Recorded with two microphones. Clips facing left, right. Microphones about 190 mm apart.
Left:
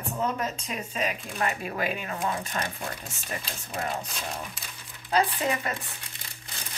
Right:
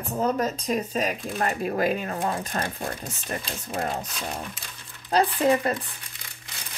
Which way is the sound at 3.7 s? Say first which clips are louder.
Right 3 dB; 35° right (ahead or behind).